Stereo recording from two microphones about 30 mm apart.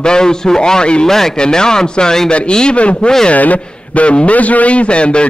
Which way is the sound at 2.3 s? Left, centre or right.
Left.